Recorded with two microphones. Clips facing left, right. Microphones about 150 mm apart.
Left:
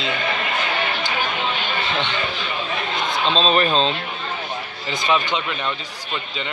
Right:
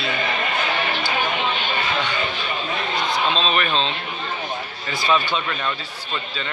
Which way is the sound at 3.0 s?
20° left (ahead or behind).